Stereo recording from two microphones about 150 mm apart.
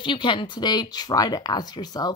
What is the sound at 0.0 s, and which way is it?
Speech, 30° left (ahead or behind).